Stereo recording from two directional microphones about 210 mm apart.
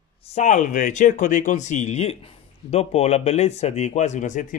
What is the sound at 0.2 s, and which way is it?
Speech, 30° left (ahead or behind).